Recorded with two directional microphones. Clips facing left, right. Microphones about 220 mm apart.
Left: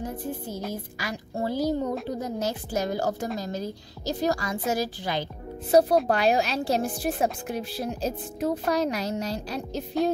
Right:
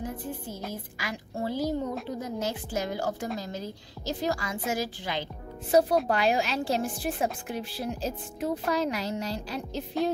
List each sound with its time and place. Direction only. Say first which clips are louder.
0.9 s speech: left 3 dB; 40° left (ahead or behind)